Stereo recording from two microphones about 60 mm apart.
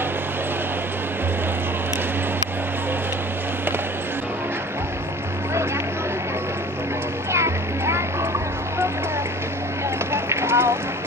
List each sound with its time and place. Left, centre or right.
7.3 s vehicle: right
10.1 s run: right